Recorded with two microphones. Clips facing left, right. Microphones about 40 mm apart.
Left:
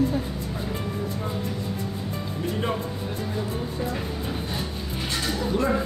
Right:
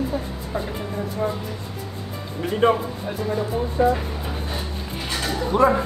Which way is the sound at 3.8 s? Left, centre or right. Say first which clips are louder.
Right 14 dB; right.